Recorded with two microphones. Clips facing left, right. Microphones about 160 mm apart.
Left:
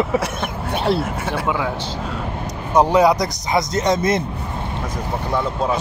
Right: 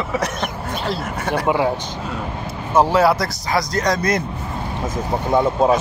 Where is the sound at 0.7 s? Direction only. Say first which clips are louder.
Left 7 dB; 65° left (ahead or behind).